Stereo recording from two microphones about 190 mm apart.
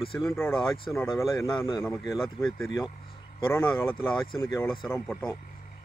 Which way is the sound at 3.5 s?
10° left (ahead or behind).